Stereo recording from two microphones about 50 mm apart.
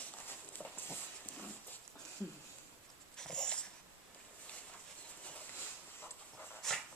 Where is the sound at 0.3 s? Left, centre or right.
Left.